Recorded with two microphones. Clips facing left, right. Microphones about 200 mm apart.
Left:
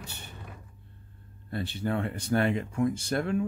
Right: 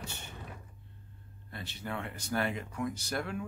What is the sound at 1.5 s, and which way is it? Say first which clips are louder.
Speech: left 9 dB; 30° left (ahead or behind).